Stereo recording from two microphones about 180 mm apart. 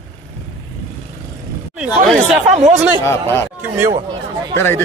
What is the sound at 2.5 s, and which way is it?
Speech, 35° right (ahead or behind).